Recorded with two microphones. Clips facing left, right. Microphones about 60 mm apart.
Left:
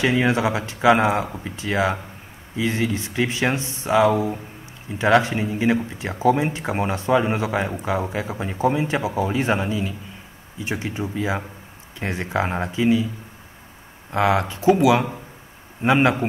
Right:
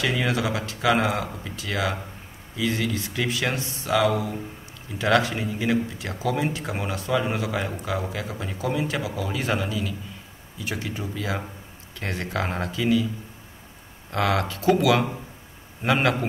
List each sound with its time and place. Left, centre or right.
0.0 s speech: left
14.1 s speech: left